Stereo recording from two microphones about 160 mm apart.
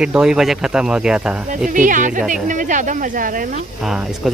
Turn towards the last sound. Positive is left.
turn(degrees=0)  # may be behind; listen again after turning